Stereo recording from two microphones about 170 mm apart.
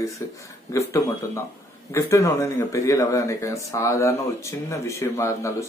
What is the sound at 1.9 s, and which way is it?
Speech, 15° left (ahead or behind).